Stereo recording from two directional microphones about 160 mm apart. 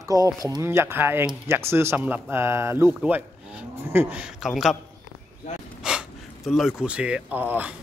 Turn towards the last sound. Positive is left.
turn(degrees=-10)  # may be behind; listen again after turning